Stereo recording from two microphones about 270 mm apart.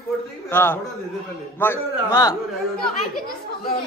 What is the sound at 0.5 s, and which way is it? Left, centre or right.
A man's voice, centre.